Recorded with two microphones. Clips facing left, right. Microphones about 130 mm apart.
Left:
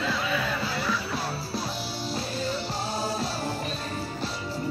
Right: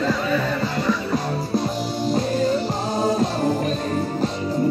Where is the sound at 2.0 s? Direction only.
45° right (ahead or behind).